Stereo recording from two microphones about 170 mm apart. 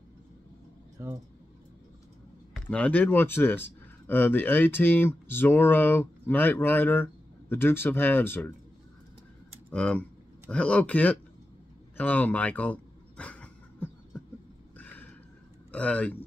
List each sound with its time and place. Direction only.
0.9 s speech: 20° right (ahead or behind)
2.5 s speech: 5° left (ahead or behind)
9.7 s speech: 5° left (ahead or behind)
12.0 s a sound: 10° left (ahead or behind)
15.7 s speech: 10° left (ahead or behind)